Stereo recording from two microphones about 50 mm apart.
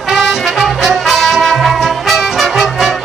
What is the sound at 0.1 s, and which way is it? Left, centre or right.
Music, centre.